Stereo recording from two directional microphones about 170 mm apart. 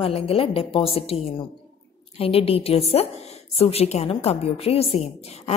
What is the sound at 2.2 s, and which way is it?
A woman's voice, 35° left (ahead or behind).